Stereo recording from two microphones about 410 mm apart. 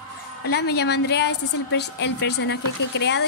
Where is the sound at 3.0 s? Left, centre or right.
Left.